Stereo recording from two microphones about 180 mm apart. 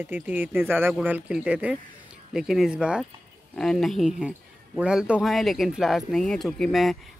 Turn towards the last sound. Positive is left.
turn(degrees=0)  # may be behind; listen again after turning